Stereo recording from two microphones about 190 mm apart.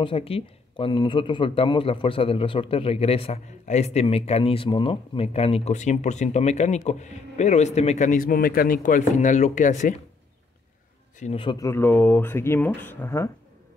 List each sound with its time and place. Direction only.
0.0 s speech: 30° left (ahead or behind)
11.1 s a man's voice: 35° left (ahead or behind)
11.4 s speech: 15° left (ahead or behind)